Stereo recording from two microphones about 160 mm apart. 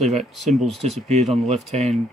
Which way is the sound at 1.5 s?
45° right (ahead or behind).